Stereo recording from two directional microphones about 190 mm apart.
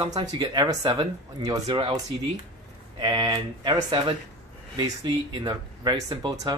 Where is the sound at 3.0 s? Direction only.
20° right (ahead or behind).